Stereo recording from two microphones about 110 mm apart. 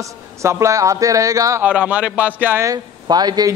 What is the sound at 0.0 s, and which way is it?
A man's voice, 25° right (ahead or behind).